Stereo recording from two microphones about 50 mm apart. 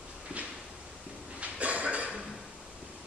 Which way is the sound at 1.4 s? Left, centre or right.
Right.